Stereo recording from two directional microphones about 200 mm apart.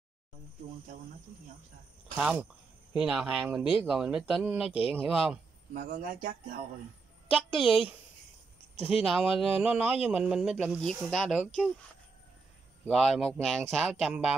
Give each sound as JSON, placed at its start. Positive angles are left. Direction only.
{"t": 2.1, "sound": "speech", "side_deg": -5}
{"t": 5.7, "sound": "a man's voice", "side_deg": -45}
{"t": 7.3, "sound": "speech", "side_deg": 0}
{"t": 8.9, "sound": "speech", "side_deg": -5}
{"t": 12.8, "sound": "speech", "side_deg": 0}